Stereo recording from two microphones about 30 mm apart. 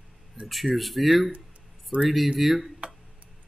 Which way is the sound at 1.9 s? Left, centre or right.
Right.